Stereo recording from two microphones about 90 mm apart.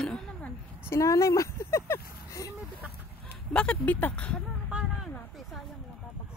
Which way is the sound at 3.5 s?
10° left (ahead or behind).